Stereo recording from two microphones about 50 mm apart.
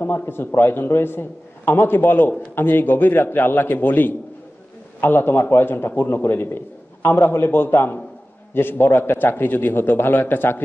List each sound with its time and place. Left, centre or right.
0.0 s a man's voice: left
6.4 s a sound: left
7.1 s a man's voice: left